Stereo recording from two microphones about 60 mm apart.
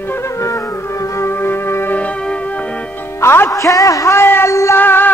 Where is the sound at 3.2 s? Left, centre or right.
Left.